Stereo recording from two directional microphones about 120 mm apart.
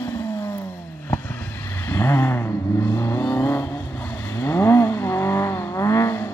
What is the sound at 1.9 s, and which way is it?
Vehicle, 20° left (ahead or behind).